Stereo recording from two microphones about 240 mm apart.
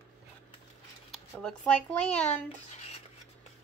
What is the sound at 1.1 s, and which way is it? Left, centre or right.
Speech, centre.